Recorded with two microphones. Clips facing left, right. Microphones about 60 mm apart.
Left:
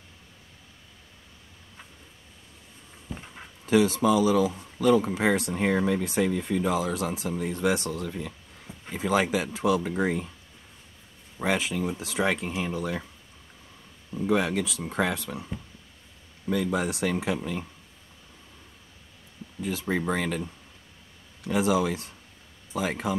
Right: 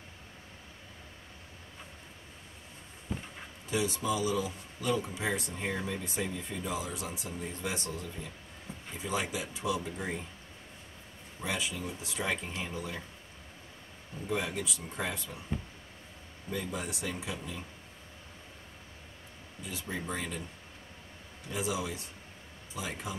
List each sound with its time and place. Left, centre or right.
3.6 s speech: left
11.4 s speech: left
12.0 s speech: left
14.2 s speech: left
16.4 s speech: left
17.4 s speech: left
19.6 s speech: left
21.5 s speech: left
22.7 s speech: left